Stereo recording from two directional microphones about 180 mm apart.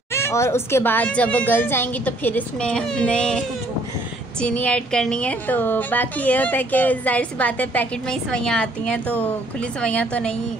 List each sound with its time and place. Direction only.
0.1 s a woman's voice: 15° left (ahead or behind)